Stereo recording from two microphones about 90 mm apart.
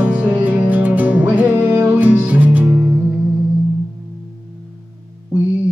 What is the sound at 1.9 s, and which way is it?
Music, 15° right (ahead or behind).